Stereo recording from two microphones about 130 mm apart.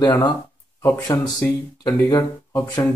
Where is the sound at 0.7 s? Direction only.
20° left (ahead or behind).